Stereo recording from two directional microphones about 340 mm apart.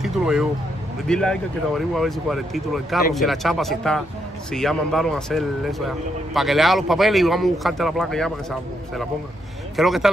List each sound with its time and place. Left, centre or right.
0.0 s speech: centre